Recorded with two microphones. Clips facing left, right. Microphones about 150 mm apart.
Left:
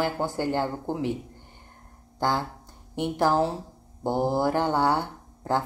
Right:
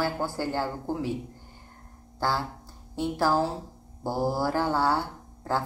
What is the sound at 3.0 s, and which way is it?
Speech, 20° left (ahead or behind).